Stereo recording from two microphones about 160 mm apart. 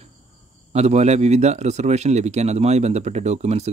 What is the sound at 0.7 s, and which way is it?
A man's voice, 45° right (ahead or behind).